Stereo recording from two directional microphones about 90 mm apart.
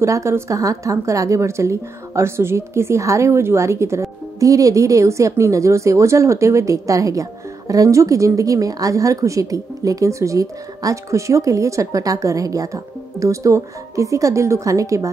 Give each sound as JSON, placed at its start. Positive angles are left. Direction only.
{"t": 0.0, "sound": "a woman's voice", "side_deg": -35}